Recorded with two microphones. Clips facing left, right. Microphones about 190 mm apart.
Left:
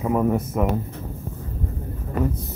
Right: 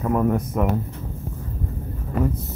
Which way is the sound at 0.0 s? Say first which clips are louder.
Even; 10° left (ahead or behind).